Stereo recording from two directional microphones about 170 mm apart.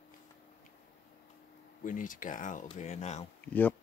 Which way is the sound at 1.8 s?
50° left (ahead or behind).